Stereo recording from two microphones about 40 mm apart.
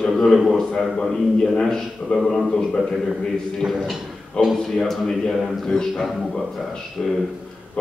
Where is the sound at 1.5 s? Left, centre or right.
Centre.